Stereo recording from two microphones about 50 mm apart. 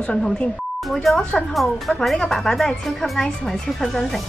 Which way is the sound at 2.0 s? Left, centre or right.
Centre.